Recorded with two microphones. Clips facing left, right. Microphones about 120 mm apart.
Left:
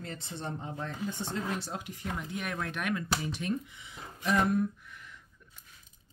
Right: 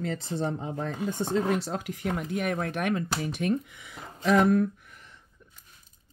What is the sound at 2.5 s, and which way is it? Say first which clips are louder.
Speech: right 5 dB; 45° right (ahead or behind).